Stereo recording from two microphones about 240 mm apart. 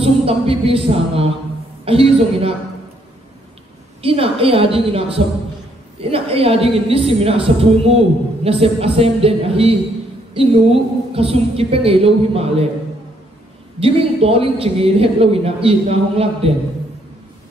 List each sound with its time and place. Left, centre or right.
0.0 s a woman's voice: right
4.0 s a woman's voice: right
13.7 s a woman's voice: right